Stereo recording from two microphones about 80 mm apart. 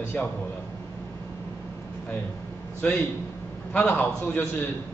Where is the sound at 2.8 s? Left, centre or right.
Centre.